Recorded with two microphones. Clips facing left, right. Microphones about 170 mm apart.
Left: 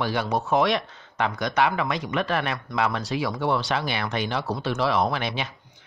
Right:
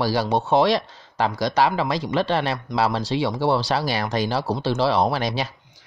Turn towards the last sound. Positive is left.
turn(degrees=-35)  # may be behind; listen again after turning